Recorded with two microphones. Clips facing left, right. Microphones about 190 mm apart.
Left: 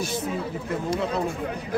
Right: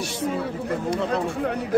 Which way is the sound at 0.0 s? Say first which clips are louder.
Right 2 dB; 70° right (ahead or behind).